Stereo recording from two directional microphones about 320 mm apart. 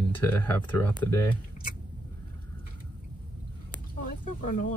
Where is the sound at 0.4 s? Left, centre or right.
Centre.